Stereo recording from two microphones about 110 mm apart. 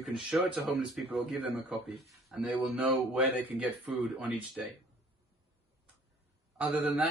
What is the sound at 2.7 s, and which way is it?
Speech, 10° right (ahead or behind).